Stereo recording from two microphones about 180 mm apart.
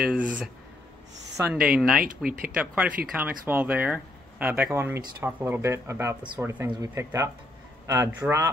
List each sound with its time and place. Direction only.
0.0 s speech: 10° right (ahead or behind)
2.0 s speech: 50° right (ahead or behind)
2.5 s speech: 10° right (ahead or behind)